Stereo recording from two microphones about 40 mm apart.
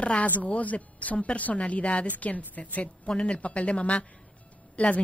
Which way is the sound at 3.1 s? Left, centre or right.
Left.